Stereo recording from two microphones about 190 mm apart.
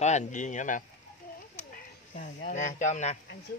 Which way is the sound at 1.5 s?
40° left (ahead or behind).